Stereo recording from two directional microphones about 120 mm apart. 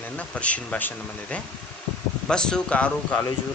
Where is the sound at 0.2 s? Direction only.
10° left (ahead or behind).